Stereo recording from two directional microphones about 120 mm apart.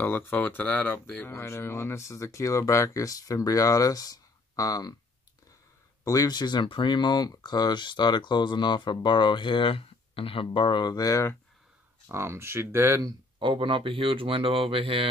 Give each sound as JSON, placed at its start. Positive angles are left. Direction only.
{"t": 0.0, "sound": "speech", "side_deg": 15}
{"t": 6.0, "sound": "speech", "side_deg": 30}
{"t": 12.1, "sound": "speech", "side_deg": -20}
{"t": 13.4, "sound": "speech", "side_deg": -45}